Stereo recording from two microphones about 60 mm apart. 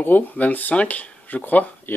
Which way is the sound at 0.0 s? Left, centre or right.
Left.